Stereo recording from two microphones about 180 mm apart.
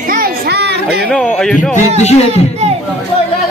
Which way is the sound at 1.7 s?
40° left (ahead or behind).